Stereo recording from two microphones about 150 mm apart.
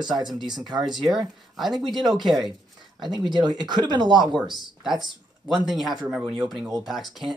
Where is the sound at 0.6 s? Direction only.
Centre (ahead or behind).